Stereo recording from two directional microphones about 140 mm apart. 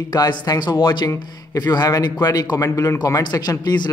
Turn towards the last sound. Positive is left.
turn(degrees=30)  # may be behind; listen again after turning